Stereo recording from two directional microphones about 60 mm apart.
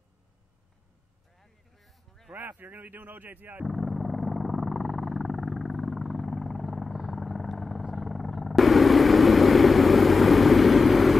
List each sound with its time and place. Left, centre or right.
1.4 s a sound: centre
2.3 s speech: right
3.6 s vehicle: centre